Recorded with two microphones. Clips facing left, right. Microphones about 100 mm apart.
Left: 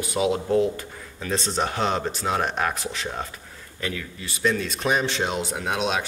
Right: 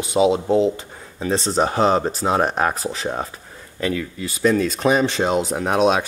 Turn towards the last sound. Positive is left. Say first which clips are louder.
# right 8 dB
turn(degrees=-40)  # may be behind; listen again after turning